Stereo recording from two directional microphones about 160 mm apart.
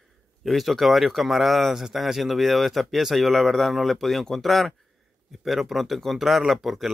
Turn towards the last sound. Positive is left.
turn(degrees=0)  # may be behind; listen again after turning